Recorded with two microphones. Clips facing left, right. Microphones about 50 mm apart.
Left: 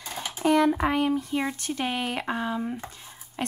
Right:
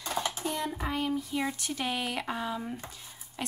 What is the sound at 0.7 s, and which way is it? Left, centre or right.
Speech, left.